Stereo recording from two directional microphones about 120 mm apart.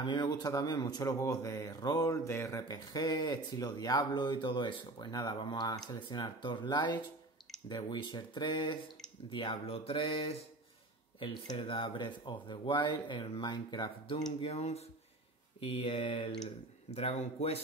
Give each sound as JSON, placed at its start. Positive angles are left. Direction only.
{"t": 0.0, "sound": "a man's voice", "side_deg": 40}
{"t": 14.4, "sound": "speech", "side_deg": 60}
{"t": 15.6, "sound": "speech", "side_deg": 50}
{"t": 16.9, "sound": "speech", "side_deg": 60}